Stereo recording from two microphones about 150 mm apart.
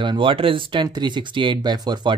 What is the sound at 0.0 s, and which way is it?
Speech, 35° right (ahead or behind).